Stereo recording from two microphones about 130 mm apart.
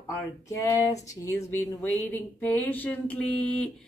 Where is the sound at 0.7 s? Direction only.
20° left (ahead or behind).